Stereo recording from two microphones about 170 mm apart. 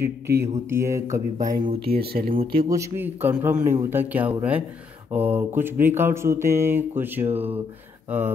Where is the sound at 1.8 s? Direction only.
65° right (ahead or behind).